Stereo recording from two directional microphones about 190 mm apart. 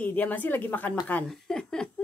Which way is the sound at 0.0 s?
10° left (ahead or behind).